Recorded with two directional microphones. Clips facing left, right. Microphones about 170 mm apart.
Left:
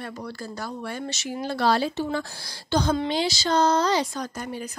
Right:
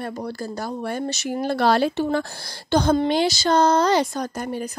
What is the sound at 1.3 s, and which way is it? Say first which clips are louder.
Speech: right 3 dB; 55° right (ahead or behind).